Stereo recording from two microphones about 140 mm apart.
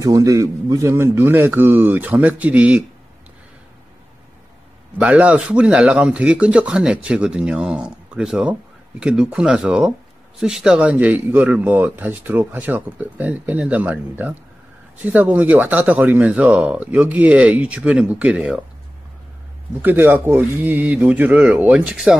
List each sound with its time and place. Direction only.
0.0 s speech: 25° right (ahead or behind)
4.9 s speech: 10° right (ahead or behind)
19.8 s speech: 15° right (ahead or behind)